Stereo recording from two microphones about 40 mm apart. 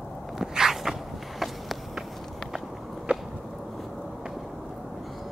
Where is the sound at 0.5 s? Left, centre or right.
Centre.